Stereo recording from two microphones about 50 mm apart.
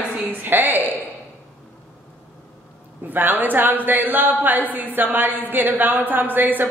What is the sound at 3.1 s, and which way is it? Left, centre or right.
A woman's voice, right.